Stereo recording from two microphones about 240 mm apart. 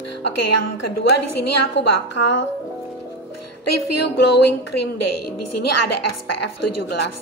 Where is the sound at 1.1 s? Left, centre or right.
Left.